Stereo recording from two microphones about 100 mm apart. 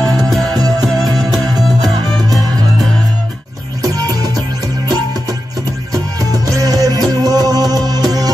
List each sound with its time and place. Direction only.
0.5 s music: 40° right (ahead or behind)
1.8 s music: 40° right (ahead or behind)
3.8 s music: 40° right (ahead or behind)
6.3 s music: 40° right (ahead or behind)